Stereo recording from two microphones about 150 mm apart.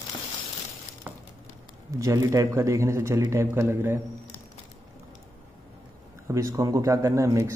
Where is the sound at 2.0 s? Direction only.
20° right (ahead or behind).